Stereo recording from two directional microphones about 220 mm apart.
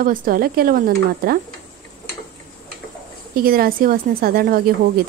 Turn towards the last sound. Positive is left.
turn(degrees=-45)  # may be behind; listen again after turning